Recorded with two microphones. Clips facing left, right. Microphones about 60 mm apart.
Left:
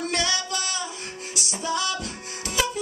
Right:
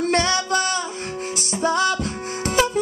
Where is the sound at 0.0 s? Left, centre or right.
Right.